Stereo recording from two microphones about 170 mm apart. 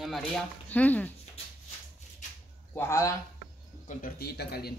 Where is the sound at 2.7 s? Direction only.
15° left (ahead or behind).